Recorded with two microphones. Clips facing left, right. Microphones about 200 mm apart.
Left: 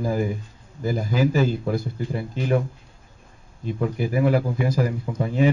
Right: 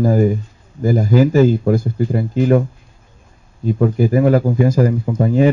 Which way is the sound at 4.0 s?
45° right (ahead or behind).